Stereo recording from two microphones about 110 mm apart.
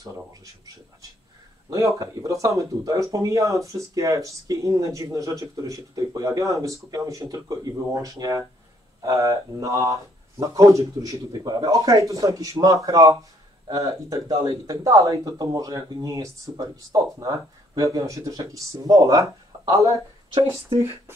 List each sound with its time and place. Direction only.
1.7 s speech: 30° right (ahead or behind)
20.7 s speech: 50° right (ahead or behind)